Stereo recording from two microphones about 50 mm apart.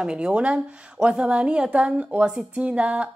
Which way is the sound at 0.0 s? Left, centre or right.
Centre.